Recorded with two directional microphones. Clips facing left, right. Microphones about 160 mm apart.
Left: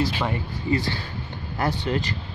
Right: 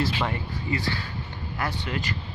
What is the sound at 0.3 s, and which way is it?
Speech, 35° left (ahead or behind).